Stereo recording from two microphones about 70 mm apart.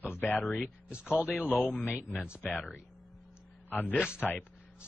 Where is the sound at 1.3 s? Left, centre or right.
Left.